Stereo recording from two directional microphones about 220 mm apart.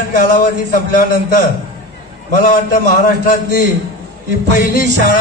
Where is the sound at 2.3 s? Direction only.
40° left (ahead or behind).